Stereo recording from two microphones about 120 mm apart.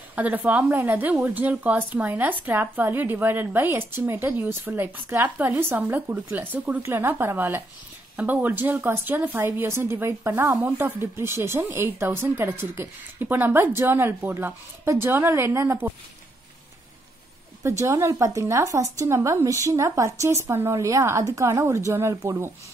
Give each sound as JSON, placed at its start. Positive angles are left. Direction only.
{"t": 0.1, "sound": "a woman's voice", "side_deg": -15}
{"t": 17.6, "sound": "speech", "side_deg": -25}